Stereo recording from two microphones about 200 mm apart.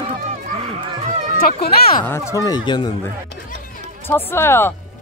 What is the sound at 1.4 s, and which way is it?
Speech, 50° left (ahead or behind).